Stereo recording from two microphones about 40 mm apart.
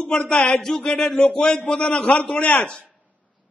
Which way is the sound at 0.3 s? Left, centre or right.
Left.